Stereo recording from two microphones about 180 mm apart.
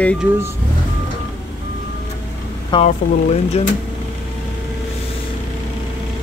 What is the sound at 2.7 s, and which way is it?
Speech, 25° left (ahead or behind).